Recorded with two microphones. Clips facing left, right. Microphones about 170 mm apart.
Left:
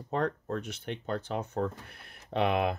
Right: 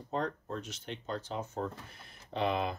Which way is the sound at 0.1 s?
60° left (ahead or behind).